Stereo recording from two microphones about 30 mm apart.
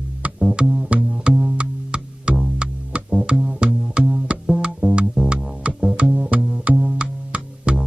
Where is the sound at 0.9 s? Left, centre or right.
Right.